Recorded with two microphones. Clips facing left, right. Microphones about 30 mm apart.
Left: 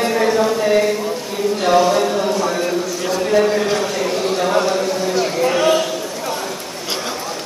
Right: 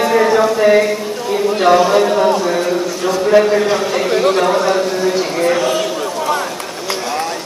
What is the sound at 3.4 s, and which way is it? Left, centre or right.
Speech, centre.